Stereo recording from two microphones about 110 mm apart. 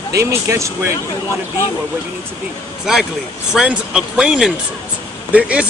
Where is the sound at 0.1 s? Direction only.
25° right (ahead or behind).